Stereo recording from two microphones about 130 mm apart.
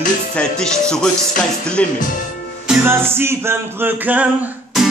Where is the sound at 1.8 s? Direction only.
10° left (ahead or behind).